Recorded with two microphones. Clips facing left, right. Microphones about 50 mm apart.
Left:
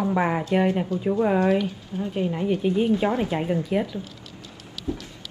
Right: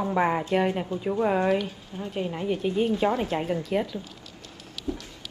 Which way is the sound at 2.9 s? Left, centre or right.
Centre.